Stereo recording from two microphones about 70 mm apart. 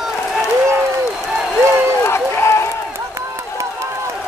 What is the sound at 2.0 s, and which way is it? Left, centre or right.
Run, left.